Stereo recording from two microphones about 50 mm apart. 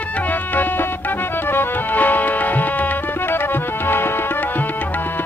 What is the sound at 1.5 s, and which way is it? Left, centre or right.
Music, left.